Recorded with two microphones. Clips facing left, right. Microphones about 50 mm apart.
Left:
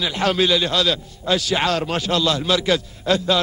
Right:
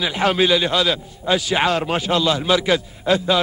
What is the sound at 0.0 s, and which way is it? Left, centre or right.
A man's voice, centre.